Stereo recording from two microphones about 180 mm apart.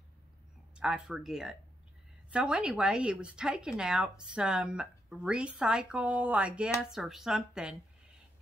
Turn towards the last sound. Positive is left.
turn(degrees=-5)  # may be behind; listen again after turning